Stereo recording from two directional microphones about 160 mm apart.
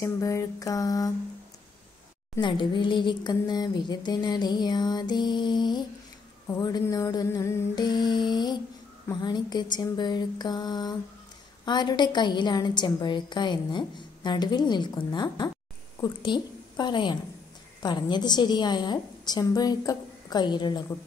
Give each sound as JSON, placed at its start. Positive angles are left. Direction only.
{"t": 0.0, "sound": "a woman's voice", "side_deg": 20}
{"t": 2.4, "sound": "a woman's voice", "side_deg": 30}